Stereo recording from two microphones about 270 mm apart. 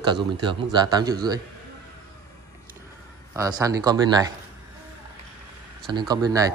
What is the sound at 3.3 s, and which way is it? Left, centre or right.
Speech, centre.